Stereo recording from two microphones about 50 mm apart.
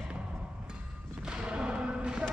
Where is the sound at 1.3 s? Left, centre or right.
Right.